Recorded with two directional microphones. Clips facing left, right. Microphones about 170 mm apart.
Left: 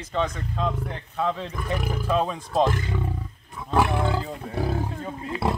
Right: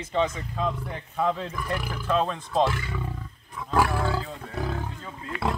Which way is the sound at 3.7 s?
25° left (ahead or behind).